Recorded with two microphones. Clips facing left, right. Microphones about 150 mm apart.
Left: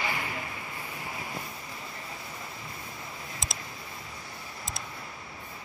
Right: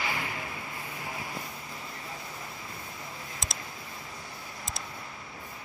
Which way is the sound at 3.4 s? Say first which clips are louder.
Even; centre (ahead or behind).